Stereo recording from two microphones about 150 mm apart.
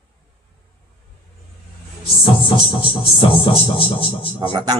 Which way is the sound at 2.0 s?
35° left (ahead or behind).